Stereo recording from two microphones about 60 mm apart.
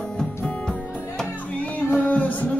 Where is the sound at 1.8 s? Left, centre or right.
Left.